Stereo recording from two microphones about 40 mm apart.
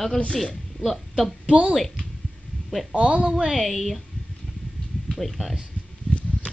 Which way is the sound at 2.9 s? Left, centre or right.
Right.